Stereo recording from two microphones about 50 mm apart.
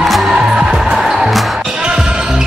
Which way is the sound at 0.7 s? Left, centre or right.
Centre.